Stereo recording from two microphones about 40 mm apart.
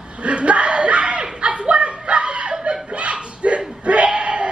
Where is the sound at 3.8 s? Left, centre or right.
Right.